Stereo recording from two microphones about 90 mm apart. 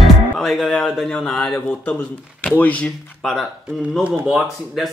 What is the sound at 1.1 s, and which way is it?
Speech, 10° left (ahead or behind).